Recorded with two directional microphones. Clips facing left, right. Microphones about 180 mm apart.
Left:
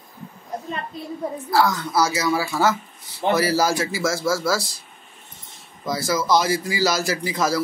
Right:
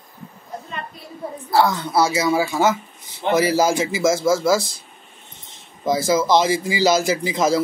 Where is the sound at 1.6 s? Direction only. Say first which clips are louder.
Right 2 dB; 25° right (ahead or behind).